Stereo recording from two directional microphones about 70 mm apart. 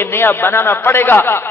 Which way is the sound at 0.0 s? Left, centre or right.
Left.